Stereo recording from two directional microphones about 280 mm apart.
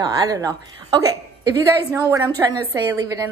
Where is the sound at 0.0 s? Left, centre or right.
Centre.